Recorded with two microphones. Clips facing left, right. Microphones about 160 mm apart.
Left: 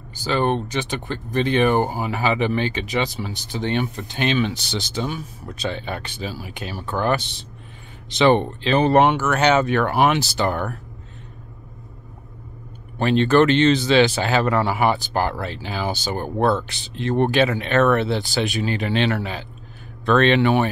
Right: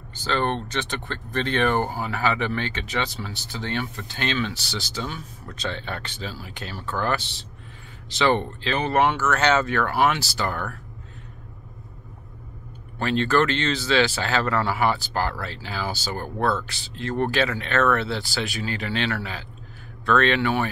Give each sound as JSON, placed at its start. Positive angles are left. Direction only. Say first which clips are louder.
{"t": 0.1, "sound": "speech", "louder": "left 4 dB", "side_deg": 10}
{"t": 8.7, "sound": "speech", "louder": "left 7 dB", "side_deg": 35}
{"t": 9.0, "sound": "speech", "louder": "left 3 dB", "side_deg": 15}
{"t": 13.0, "sound": "speech", "louder": "left 5 dB", "side_deg": 20}